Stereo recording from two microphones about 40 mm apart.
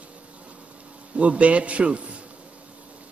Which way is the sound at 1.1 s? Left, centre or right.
Right.